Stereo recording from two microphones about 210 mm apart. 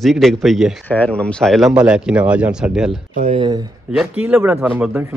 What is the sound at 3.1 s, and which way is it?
Speech, 30° right (ahead or behind).